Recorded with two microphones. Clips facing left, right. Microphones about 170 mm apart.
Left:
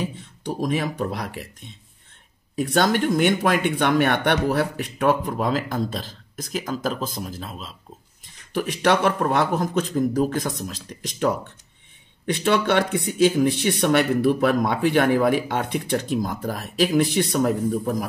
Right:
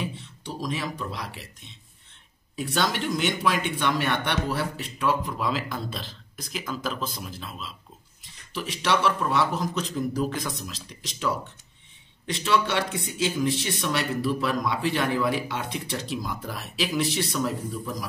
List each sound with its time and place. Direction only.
0.0 s speech: 50° left (ahead or behind)
8.5 s speech: 55° left (ahead or behind)